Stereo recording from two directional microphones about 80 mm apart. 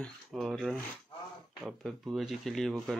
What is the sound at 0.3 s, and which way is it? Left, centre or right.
Speech, centre.